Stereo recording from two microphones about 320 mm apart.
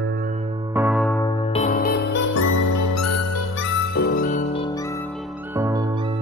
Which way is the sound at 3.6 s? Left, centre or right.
Left.